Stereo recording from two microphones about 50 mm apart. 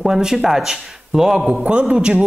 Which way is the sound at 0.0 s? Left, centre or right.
Centre.